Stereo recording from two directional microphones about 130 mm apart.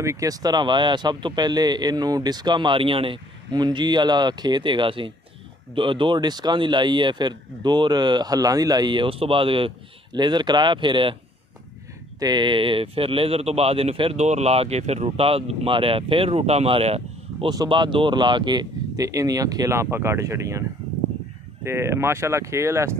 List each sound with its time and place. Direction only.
0.0 s a man's voice: 25° right (ahead or behind); by 11.1 s 40° right (ahead or behind)
12.2 s speech: 35° right (ahead or behind)
14.1 s speech: 60° right (ahead or behind)
17.5 s speech: 35° right (ahead or behind)
21.6 s speech: 20° right (ahead or behind)